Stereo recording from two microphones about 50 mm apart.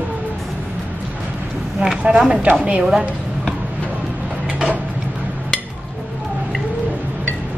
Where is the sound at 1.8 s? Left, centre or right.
Right.